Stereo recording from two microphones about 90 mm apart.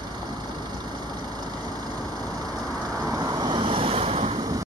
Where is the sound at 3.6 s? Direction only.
90° right.